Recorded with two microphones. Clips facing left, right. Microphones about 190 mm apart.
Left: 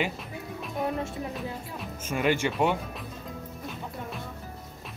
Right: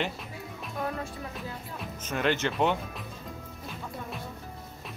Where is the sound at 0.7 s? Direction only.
20° left (ahead or behind).